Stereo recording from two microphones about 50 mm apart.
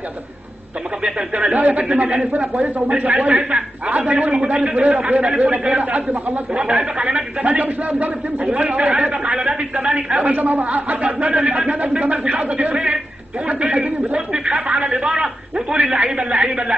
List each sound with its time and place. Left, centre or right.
1.0 s a man's voice: right
10.3 s speech: right; by 16.7 s centre